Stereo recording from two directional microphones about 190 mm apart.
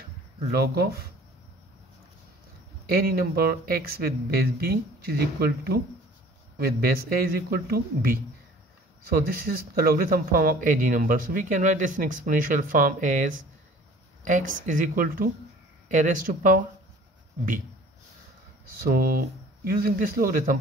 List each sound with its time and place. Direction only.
2.9 s speech: 50° right (ahead or behind)
18.8 s speech: 50° right (ahead or behind)